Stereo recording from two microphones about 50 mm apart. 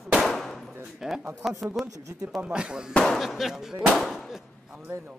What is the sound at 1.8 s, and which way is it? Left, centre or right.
Speech, right.